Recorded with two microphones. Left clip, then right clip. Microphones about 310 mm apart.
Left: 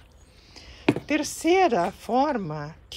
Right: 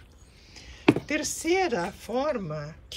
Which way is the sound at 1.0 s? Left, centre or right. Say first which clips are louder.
Left 4 dB; centre.